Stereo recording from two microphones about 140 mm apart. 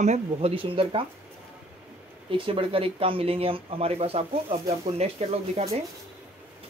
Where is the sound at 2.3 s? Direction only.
40° right (ahead or behind).